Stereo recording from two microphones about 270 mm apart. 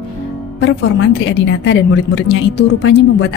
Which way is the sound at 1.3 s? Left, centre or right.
Left.